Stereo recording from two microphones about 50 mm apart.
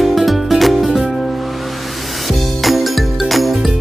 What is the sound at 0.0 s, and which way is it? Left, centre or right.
Music, centre.